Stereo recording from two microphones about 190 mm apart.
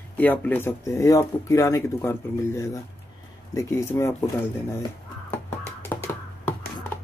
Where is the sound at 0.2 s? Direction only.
10° left (ahead or behind).